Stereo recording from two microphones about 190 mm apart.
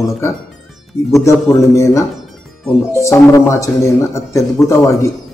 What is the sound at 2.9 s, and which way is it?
A man's voice, 15° left (ahead or behind).